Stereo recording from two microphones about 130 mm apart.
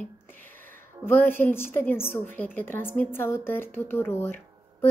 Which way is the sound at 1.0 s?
15° left (ahead or behind).